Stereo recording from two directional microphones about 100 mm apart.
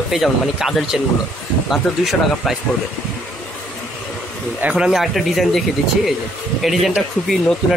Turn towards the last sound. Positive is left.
turn(degrees=0)  # may be behind; listen again after turning